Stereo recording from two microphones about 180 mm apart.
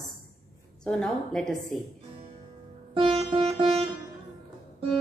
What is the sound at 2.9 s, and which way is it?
Sitar, 30° right (ahead or behind).